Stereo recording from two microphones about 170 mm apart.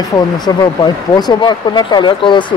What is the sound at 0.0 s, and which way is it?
Speech, 25° left (ahead or behind).